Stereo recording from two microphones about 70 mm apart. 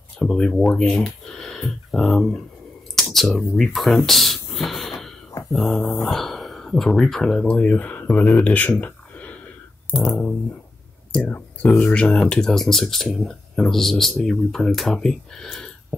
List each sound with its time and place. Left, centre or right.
0.2 s speech: centre
3.0 s a sound: centre
5.5 s dog: centre
6.0 s speech: centre; by 8.7 s left
10.0 s speech: centre